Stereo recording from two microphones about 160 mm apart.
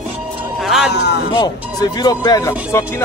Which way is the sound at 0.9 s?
90° left.